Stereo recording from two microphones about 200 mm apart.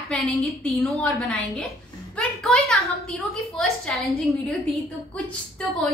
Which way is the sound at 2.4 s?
5° left (ahead or behind).